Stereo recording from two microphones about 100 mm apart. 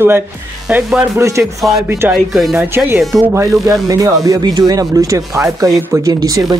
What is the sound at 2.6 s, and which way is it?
Speech, 20° right (ahead or behind).